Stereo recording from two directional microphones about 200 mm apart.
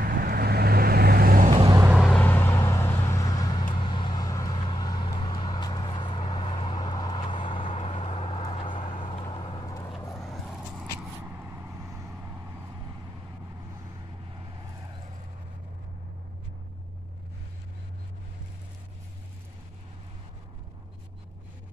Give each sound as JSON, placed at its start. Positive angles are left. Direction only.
{"t": 0.0, "sound": "vehicle", "side_deg": -50}
{"t": 1.5, "sound": "vehicle", "side_deg": -30}
{"t": 1.8, "sound": "vehicle", "side_deg": -5}